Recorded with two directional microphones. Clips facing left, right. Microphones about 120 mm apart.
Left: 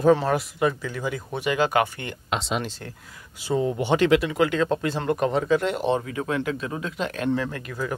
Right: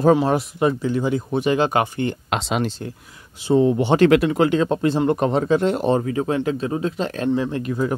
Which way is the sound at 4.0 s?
50° right (ahead or behind).